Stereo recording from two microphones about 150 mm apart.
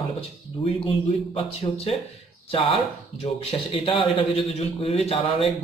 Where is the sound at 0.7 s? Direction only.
40° left (ahead or behind).